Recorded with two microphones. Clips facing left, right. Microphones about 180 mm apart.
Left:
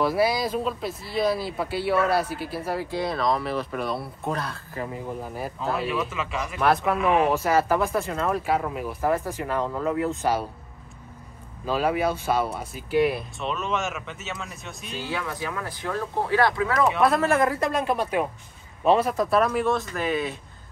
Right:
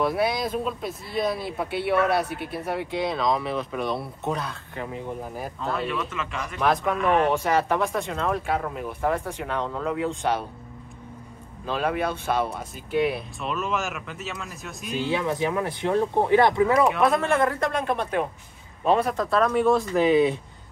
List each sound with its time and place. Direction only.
0.0 s speech: centre (ahead or behind)
11.6 s speech: 5° left (ahead or behind)
15.0 s speech: 20° right (ahead or behind)
16.8 s speech: centre (ahead or behind)
19.9 s speech: 15° right (ahead or behind)